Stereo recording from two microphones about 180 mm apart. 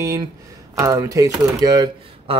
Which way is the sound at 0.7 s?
20° right (ahead or behind).